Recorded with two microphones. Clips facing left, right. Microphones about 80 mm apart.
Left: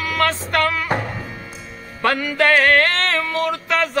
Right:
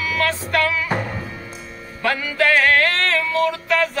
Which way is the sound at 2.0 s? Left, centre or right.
Left.